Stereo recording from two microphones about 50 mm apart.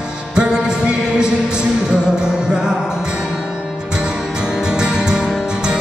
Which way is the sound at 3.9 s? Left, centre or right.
Centre.